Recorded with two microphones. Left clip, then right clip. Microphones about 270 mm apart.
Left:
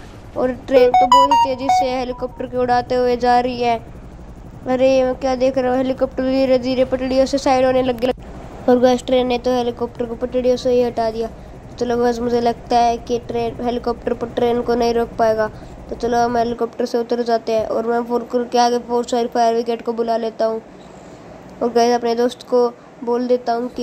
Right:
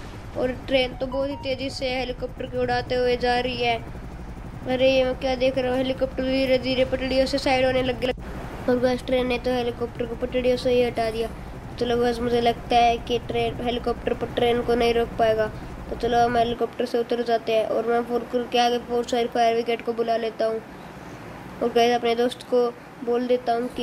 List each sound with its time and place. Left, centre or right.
0.4 s a woman's voice: centre
21.5 s speech: centre